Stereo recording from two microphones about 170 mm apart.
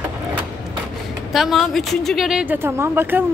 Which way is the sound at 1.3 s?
Centre (ahead or behind).